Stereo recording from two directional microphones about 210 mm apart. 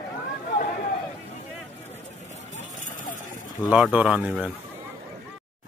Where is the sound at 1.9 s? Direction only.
35° left (ahead or behind).